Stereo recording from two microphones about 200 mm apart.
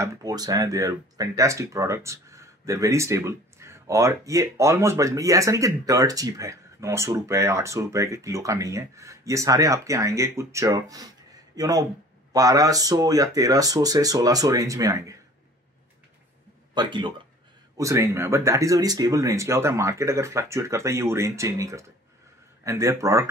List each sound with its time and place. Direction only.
0.0 s speech: 20° right (ahead or behind)
16.7 s speech: 20° right (ahead or behind)